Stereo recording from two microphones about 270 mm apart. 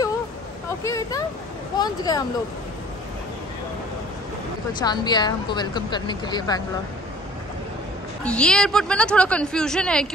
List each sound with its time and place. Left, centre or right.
0.8 s a woman's voice: centre
4.8 s a woman's voice: centre
8.2 s speech: centre